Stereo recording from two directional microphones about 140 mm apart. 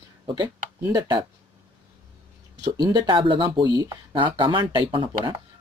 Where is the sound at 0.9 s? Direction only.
30° right (ahead or behind).